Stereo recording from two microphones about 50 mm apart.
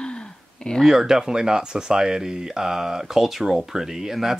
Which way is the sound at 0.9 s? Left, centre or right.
Centre.